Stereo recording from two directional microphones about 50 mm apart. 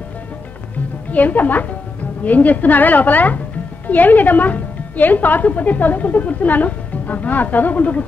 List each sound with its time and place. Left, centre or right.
1.1 s a woman's voice: left